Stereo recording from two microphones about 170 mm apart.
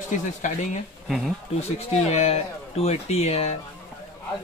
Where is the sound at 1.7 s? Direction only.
40° left (ahead or behind).